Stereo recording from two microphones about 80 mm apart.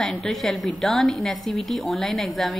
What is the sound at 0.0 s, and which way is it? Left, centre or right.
A woman's voice, centre.